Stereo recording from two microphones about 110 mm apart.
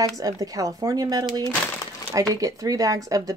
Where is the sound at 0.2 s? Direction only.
30° right (ahead or behind).